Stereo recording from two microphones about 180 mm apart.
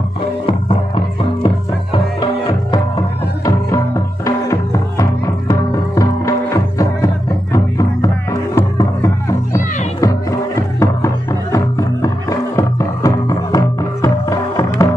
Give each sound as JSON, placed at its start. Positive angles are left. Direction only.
{"t": 0.5, "sound": "music", "side_deg": 30}